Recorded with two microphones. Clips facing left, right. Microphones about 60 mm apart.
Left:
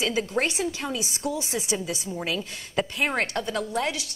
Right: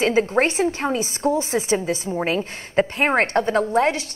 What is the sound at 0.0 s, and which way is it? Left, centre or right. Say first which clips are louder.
A woman's voice: right 7 dB; right.